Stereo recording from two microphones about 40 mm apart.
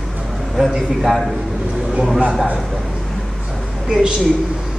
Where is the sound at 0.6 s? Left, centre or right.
Centre.